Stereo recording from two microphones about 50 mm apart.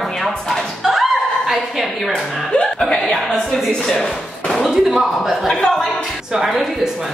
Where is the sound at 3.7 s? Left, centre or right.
Centre.